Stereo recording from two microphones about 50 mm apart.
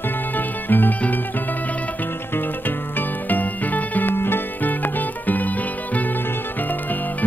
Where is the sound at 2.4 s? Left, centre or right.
Left.